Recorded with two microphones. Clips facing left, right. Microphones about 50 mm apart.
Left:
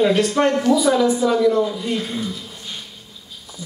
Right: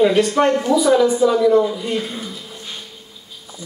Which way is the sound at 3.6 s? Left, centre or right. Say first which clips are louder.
Even; right.